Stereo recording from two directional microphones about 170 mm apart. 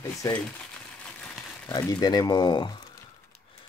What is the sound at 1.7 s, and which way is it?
Speech, 20° left (ahead or behind).